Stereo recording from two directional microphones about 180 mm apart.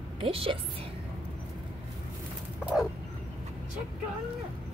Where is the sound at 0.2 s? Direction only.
30° right (ahead or behind).